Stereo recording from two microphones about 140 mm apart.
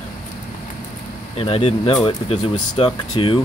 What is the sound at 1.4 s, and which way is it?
Speech, 45° left (ahead or behind).